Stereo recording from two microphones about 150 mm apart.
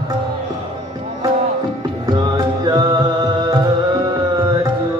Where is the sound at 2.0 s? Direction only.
25° right (ahead or behind).